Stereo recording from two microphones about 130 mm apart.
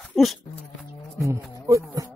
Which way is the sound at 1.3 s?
25° right (ahead or behind).